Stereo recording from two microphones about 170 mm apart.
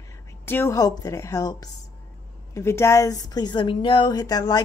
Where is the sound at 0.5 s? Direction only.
15° left (ahead or behind).